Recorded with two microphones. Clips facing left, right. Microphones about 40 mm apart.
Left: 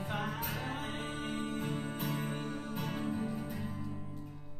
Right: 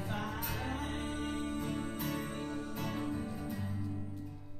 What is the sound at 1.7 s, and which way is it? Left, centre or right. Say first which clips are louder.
Music: even; left.